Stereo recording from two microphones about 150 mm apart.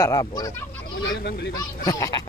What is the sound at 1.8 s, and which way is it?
Speech, 25° left (ahead or behind).